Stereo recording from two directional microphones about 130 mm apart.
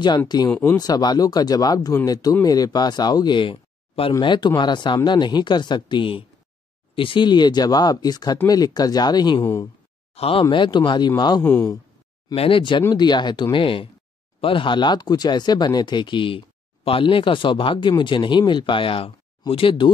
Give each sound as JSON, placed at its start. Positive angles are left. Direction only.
{"t": 0.5, "sound": "speech", "side_deg": 15}
{"t": 0.7, "sound": "speech", "side_deg": 30}
{"t": 10.1, "sound": "speech", "side_deg": 50}
{"t": 10.5, "sound": "speech", "side_deg": 40}
{"t": 11.4, "sound": "speech", "side_deg": 15}
{"t": 12.4, "sound": "speech", "side_deg": 45}